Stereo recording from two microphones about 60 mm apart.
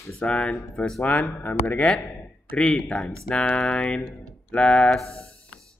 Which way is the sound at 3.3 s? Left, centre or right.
Centre.